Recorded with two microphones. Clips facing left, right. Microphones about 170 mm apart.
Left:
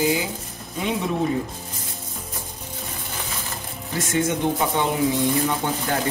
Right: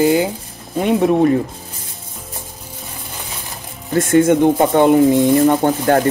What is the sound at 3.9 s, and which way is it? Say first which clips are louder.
Speech: right 11 dB; 55° right (ahead or behind).